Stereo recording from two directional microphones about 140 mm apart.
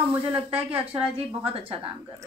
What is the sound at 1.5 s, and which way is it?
Speech, 40° right (ahead or behind).